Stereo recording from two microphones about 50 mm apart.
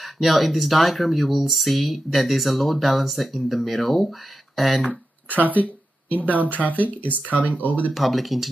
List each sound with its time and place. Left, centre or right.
0.0 s speech: centre
4.8 s speech: left
7.3 s speech: right
7.9 s speech: centre